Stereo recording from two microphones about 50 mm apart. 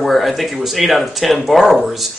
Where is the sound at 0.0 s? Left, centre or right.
Centre.